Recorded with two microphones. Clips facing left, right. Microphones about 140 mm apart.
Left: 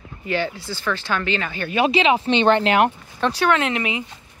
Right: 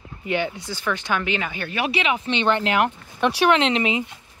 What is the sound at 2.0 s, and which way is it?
Speech, 30° left (ahead or behind).